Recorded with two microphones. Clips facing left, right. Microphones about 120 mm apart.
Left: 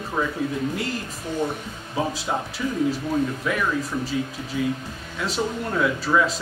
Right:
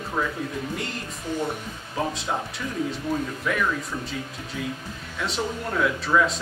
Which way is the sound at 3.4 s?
5° left (ahead or behind).